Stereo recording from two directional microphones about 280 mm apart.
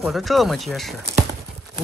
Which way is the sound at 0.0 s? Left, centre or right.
Centre.